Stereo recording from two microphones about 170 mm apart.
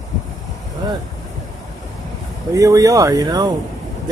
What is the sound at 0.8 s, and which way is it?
Speech, 25° right (ahead or behind).